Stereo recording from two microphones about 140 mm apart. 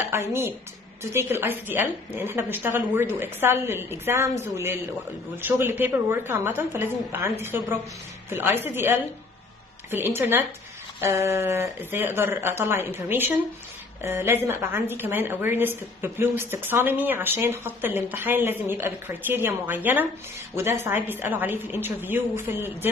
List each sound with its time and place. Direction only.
0.1 s a woman's voice: 20° right (ahead or behind)